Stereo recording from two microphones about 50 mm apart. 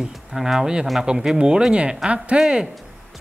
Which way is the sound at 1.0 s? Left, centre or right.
Centre.